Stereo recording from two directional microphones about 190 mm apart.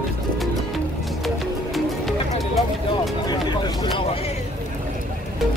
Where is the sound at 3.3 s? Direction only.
20° left (ahead or behind).